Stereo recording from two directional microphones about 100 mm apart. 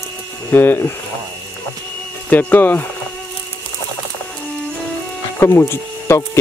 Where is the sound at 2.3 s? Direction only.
20° left (ahead or behind).